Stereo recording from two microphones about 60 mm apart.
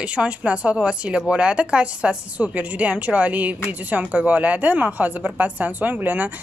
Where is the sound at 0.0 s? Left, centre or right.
Centre.